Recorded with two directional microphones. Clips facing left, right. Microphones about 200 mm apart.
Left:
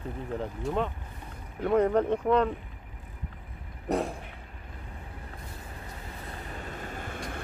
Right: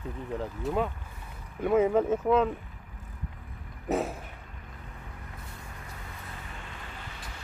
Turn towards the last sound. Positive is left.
turn(degrees=50)  # may be behind; listen again after turning